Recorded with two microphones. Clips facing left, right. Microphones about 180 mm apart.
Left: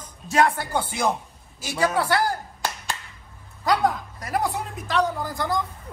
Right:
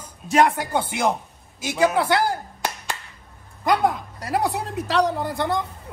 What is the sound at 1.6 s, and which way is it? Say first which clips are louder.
Clapping: right 3 dB; 20° right (ahead or behind).